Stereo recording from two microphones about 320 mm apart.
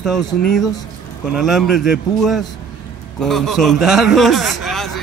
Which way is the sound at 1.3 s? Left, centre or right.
Centre.